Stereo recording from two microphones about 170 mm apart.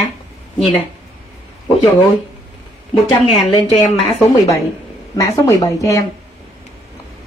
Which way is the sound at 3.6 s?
35° left (ahead or behind).